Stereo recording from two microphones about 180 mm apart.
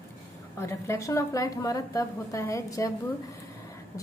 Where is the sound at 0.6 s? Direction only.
15° left (ahead or behind).